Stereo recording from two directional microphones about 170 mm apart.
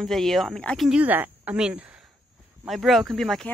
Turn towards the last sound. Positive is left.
turn(degrees=0)  # may be behind; listen again after turning